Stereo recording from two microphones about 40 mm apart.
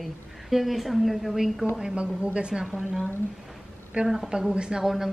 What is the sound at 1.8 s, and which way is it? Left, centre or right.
Speech, right.